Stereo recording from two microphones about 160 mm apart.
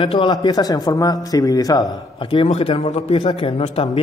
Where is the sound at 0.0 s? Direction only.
30° left (ahead or behind).